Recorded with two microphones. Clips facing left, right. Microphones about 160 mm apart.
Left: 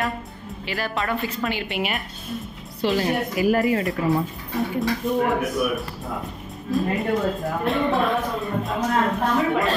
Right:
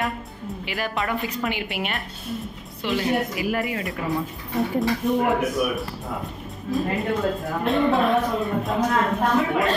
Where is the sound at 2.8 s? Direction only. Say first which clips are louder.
Left 1 dB; 40° left (ahead or behind).